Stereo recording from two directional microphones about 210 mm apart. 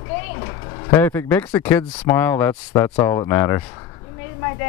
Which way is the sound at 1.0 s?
10° left (ahead or behind).